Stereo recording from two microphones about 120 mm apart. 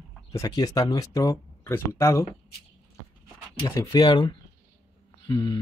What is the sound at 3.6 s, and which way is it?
Speech, 30° left (ahead or behind).